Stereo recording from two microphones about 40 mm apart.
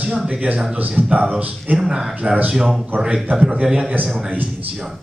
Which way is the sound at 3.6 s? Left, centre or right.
Right.